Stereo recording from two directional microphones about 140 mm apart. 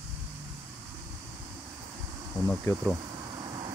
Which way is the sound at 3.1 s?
35° right (ahead or behind).